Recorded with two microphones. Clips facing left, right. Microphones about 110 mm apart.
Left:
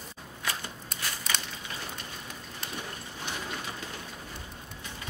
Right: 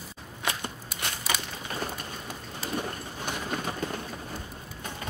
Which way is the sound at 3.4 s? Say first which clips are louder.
Right 6 dB; 50° right (ahead or behind).